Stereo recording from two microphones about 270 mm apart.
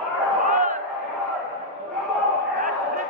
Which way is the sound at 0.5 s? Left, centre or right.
Right.